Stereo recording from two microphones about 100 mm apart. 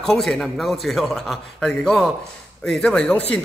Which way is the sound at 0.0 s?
5° left (ahead or behind).